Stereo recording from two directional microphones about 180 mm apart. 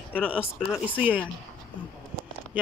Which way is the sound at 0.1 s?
10° left (ahead or behind).